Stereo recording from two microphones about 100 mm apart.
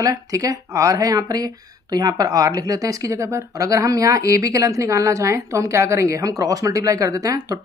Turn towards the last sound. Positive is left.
turn(degrees=-35)  # may be behind; listen again after turning